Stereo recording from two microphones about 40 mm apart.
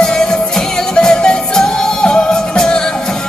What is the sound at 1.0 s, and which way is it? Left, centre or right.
Music, centre.